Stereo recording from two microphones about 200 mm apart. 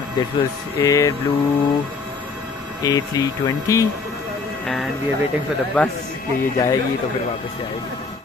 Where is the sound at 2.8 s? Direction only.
20° left (ahead or behind).